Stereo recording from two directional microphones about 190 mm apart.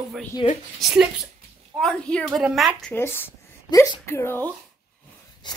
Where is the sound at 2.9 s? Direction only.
10° left (ahead or behind).